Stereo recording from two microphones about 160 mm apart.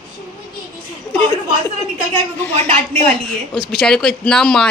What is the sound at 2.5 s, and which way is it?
Speech, 40° right (ahead or behind).